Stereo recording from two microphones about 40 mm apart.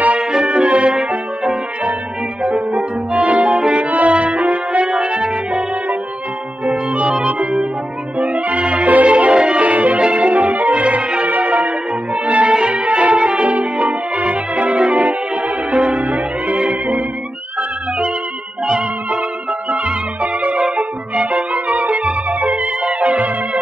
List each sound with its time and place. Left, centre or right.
0.2 s music: centre
0.5 s brass instrument: right
2.4 s music: right
3.7 s brass instrument: right
4.8 s brass instrument: right
6.6 s music: right
8.2 s music: right
9.7 s music: right
11.2 s music: right
19.7 s music: right